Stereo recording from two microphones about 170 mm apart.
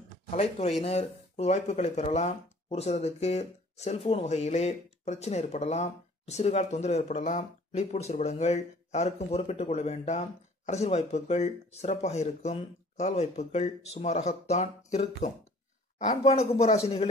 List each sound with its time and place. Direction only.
0.3 s speech: 40° left (ahead or behind)